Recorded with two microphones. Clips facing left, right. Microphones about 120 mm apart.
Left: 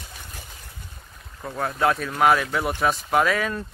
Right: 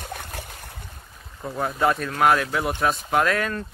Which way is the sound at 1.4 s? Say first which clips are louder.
Even; centre (ahead or behind).